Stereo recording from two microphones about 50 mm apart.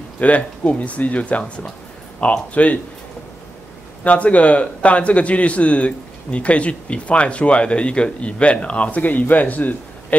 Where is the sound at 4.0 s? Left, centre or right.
Left.